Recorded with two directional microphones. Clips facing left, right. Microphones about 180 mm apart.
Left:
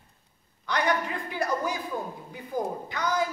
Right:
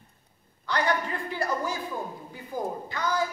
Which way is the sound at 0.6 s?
15° left (ahead or behind).